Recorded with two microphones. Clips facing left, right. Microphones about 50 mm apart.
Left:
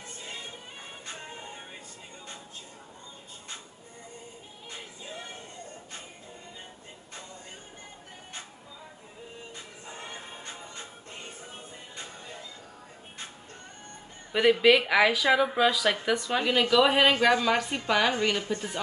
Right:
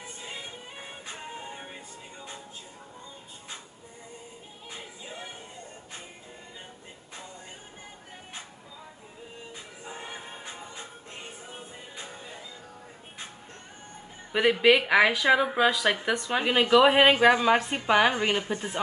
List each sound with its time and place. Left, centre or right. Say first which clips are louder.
4.6 s music: even; centre
9.5 s music: right 2 dB; centre
14.3 s a woman's voice: even; centre
18.4 s speech: even; centre